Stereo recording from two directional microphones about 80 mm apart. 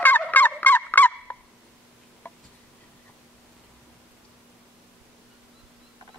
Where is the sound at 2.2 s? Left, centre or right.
Left.